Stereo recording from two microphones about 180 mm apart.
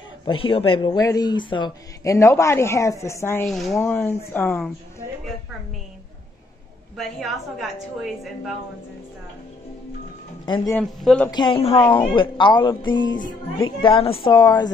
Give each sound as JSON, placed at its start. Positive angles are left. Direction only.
{"t": 0.2, "sound": "speech", "side_deg": 30}
{"t": 3.4, "sound": "speech", "side_deg": 0}
{"t": 7.0, "sound": "a woman's voice", "side_deg": 0}
{"t": 10.4, "sound": "speech", "side_deg": 25}
{"t": 10.7, "sound": "a woman's voice", "side_deg": 5}
{"t": 11.2, "sound": "a woman's voice", "side_deg": 25}